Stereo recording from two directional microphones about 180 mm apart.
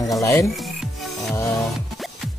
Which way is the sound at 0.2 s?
15° left (ahead or behind).